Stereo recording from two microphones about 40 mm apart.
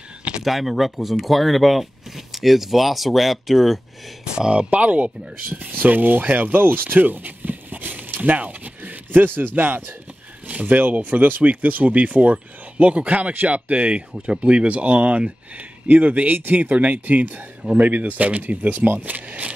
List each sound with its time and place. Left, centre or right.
0.4 s speech: centre
4.2 s speech: right
4.6 s speech: right
10.5 s speech: right
15.9 s speech: right